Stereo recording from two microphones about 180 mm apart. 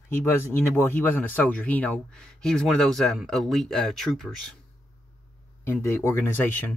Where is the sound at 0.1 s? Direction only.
10° left (ahead or behind).